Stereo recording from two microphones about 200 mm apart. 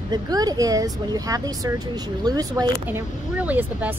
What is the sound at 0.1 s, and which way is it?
Speech, 20° right (ahead or behind).